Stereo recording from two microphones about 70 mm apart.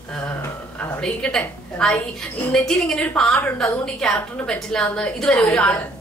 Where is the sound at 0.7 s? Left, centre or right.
Left.